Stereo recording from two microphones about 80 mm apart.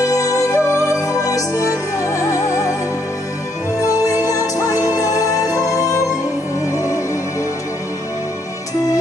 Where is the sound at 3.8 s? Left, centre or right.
Left.